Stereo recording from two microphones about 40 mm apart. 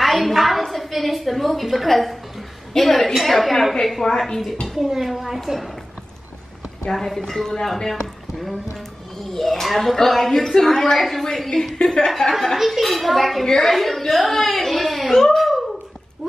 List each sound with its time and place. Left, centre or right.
0.0 s a woman's voice: centre
4.1 s a woman's voice: centre
4.8 s a woman's voice: centre
6.9 s a woman's voice: centre
11.8 s speech: left
12.1 s a woman's voice: centre
12.5 s a woman's voice: centre